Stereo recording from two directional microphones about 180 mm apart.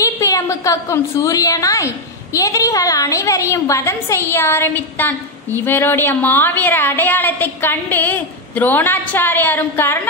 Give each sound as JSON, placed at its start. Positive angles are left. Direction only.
{"t": 0.0, "sound": "a woman's voice", "side_deg": 20}